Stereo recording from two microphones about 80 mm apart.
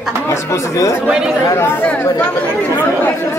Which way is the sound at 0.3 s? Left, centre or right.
Left.